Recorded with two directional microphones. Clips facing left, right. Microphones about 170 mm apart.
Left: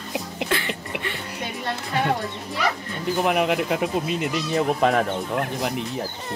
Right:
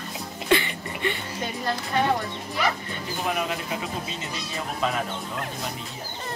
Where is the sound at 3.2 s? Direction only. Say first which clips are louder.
Left 6 dB; 70° left (ahead or behind).